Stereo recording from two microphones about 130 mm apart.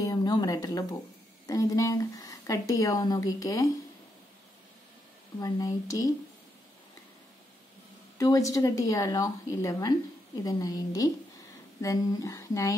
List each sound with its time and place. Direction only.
0.0 s a sound: 30° left (ahead or behind)
1.5 s a woman's voice: 25° left (ahead or behind)
5.4 s a woman's voice: 25° left (ahead or behind)
8.2 s a woman's voice: 25° left (ahead or behind)